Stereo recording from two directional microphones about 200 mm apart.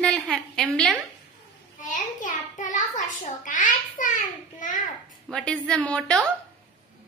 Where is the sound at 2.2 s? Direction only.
40° left (ahead or behind).